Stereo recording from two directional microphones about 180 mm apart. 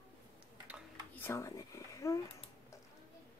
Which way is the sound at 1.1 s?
15° left (ahead or behind).